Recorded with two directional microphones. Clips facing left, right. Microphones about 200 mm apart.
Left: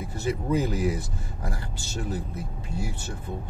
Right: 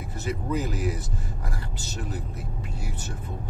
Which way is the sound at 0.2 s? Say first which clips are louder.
Left 3 dB; 30° left (ahead or behind).